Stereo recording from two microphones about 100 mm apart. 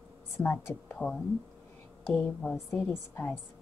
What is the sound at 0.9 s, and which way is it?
Speech, 5° left (ahead or behind).